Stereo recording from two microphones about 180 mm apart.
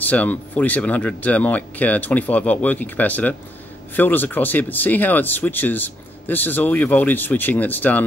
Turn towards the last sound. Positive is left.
turn(degrees=10)  # may be behind; listen again after turning